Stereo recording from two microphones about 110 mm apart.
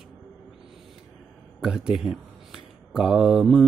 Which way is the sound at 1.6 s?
5° right (ahead or behind).